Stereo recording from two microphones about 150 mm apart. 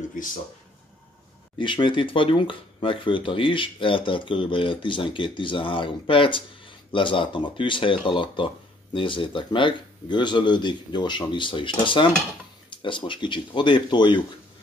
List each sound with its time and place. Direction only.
0.1 s speech: 65° left (ahead or behind)
1.6 s speech: 30° left (ahead or behind)